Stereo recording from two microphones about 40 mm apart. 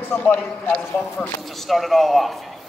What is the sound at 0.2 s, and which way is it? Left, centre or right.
Speech, left.